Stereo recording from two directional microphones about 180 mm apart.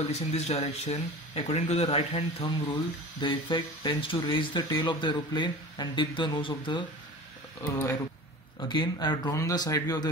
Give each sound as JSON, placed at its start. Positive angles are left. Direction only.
{"t": 0.1, "sound": "speech", "side_deg": 35}
{"t": 8.5, "sound": "speech", "side_deg": 25}